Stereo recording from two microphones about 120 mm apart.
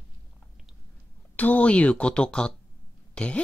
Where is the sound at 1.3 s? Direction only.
10° left (ahead or behind).